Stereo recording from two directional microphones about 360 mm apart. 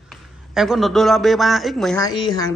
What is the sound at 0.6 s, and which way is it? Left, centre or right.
A man's voice, centre.